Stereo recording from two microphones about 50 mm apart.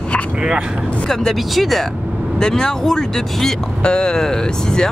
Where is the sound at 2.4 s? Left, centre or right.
Centre.